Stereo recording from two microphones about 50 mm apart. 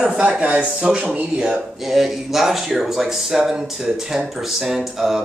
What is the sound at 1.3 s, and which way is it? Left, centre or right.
A man's voice, centre.